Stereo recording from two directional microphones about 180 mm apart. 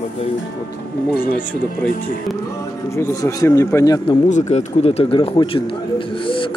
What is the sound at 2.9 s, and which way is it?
A man's voice, 15° left (ahead or behind).